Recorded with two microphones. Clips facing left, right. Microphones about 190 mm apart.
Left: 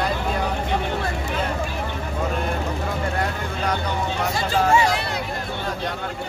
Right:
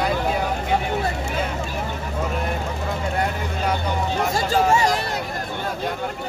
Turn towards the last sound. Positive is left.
turn(degrees=-40)  # may be behind; listen again after turning